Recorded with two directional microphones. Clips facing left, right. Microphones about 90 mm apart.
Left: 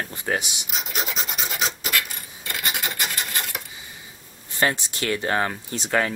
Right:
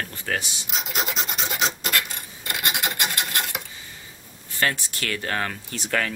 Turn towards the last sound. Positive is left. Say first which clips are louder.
# left 3 dB
turn(degrees=20)  # may be behind; listen again after turning